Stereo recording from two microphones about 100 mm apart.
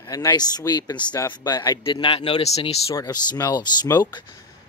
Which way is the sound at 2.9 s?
40° left (ahead or behind).